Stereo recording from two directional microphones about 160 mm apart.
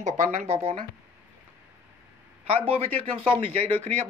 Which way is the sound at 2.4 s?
35° right (ahead or behind).